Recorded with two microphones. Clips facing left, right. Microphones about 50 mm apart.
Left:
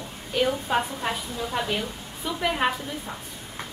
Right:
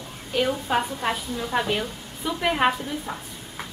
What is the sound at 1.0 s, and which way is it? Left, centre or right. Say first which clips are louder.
A woman's voice: right 2 dB; centre.